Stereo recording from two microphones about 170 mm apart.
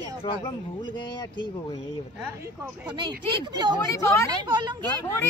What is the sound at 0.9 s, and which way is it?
Speech, 25° left (ahead or behind).